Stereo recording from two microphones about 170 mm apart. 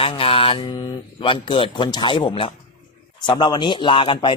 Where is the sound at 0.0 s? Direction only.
35° left (ahead or behind).